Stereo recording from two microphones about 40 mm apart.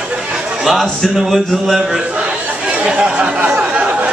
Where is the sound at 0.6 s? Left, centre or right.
Centre.